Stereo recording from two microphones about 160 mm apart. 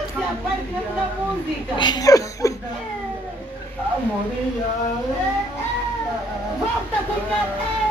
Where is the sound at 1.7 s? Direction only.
30° left (ahead or behind).